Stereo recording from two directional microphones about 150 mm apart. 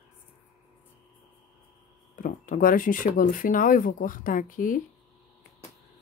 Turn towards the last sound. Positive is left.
turn(degrees=65)  # may be behind; listen again after turning